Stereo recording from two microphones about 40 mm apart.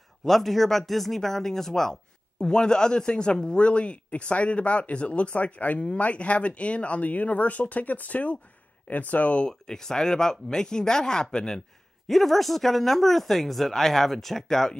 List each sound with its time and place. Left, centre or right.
0.2 s speech: centre; by 9.5 s left
9.5 s speech: centre
12.1 s speech: centre